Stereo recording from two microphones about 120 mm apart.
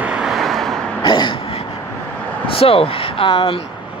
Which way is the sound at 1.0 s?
40° left (ahead or behind).